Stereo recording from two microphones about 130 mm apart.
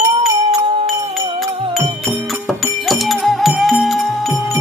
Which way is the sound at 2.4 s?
5° right (ahead or behind).